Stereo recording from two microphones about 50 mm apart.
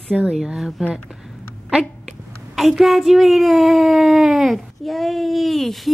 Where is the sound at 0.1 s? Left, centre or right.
Centre.